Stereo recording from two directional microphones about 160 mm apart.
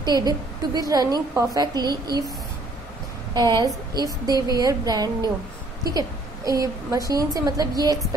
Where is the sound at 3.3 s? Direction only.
25° right (ahead or behind).